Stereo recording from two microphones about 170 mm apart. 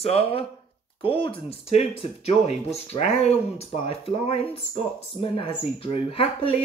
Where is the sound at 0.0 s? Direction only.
35° left (ahead or behind).